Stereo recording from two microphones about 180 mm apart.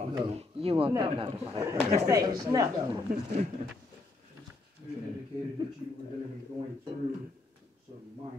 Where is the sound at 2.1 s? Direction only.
20° right (ahead or behind).